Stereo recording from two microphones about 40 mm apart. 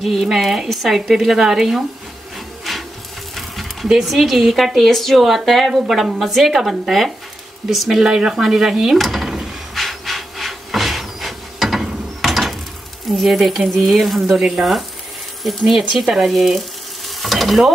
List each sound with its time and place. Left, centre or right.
0.0 s a woman's voice: centre
2.3 s wood: centre
3.3 s a sound: centre
4.0 s a woman's voice: centre
8.0 s a woman's voice: centre
8.9 s rub: centre
13.2 s a woman's voice: centre